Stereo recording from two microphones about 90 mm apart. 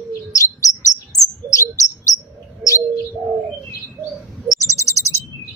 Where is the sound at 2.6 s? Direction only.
Centre (ahead or behind).